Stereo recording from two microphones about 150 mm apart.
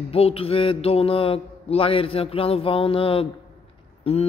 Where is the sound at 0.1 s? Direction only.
40° left (ahead or behind).